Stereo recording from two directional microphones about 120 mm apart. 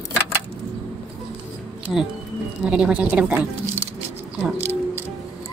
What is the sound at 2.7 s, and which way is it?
Speech, 10° right (ahead or behind).